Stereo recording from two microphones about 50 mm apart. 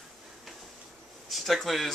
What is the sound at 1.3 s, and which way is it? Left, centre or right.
Speech, centre.